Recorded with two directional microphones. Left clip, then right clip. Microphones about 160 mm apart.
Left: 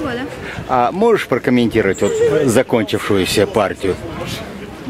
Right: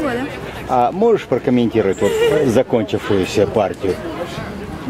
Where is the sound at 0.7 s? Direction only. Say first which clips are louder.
Left 1 dB; 25° left (ahead or behind).